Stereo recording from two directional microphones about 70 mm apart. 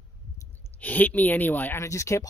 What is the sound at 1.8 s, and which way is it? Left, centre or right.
Speech, left.